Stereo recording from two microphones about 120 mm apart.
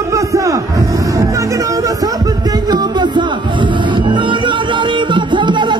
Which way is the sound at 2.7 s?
40° right (ahead or behind).